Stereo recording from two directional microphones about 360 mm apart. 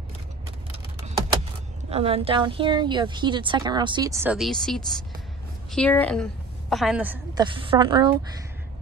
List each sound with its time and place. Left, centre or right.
0.7 s typing: centre
1.9 s a woman's voice: centre